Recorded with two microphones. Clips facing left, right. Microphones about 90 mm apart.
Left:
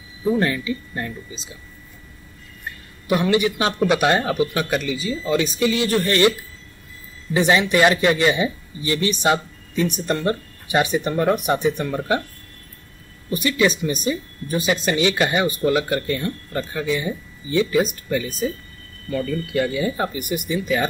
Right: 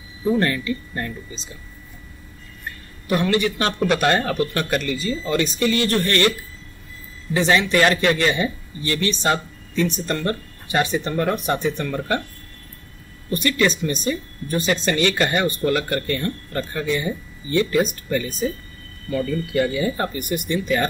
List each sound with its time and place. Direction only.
0.4 s speech: 10° left (ahead or behind)
3.1 s speech: 15° left (ahead or behind)
7.3 s speech: 15° left (ahead or behind)
13.3 s speech: 10° left (ahead or behind)